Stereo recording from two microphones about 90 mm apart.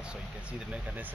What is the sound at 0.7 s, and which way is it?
Vehicle, 15° right (ahead or behind).